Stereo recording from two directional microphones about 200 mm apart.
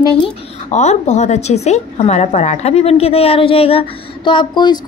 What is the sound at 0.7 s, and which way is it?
A woman's voice, 35° left (ahead or behind).